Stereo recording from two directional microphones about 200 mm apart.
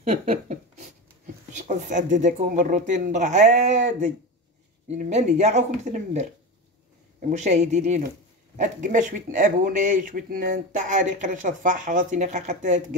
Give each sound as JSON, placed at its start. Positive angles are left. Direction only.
{"t": 0.0, "sound": "speech", "side_deg": -35}